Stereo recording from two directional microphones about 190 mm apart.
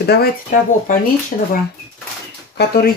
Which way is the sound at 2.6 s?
55° left (ahead or behind).